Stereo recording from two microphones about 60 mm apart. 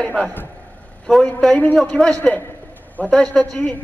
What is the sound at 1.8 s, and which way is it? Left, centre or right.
A man's voice, centre.